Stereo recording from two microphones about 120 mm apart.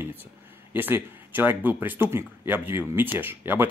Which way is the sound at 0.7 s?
15° right (ahead or behind).